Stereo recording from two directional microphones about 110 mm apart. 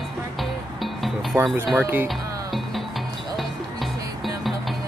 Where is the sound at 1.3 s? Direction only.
20° right (ahead or behind).